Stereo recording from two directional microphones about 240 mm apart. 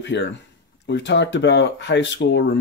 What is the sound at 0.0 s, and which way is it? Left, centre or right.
Speech, left.